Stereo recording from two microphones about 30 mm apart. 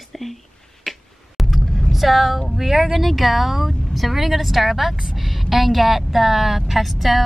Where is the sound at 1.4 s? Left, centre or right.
Centre.